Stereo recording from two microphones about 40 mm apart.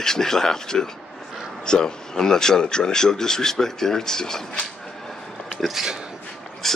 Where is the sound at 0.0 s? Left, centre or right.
Centre.